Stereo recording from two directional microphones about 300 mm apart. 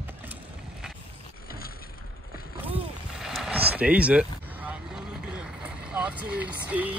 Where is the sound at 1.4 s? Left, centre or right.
Left.